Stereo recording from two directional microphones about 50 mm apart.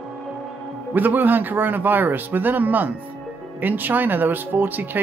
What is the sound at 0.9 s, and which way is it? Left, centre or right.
Speech, right.